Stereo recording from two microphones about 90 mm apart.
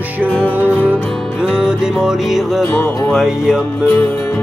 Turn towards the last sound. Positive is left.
turn(degrees=-5)  # may be behind; listen again after turning